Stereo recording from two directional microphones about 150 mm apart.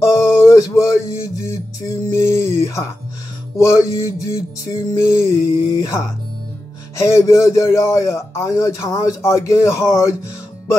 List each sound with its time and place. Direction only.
0.0 s a sound: 20° left (ahead or behind)
3.5 s speech: 20° left (ahead or behind)
7.0 s speech: 20° left (ahead or behind)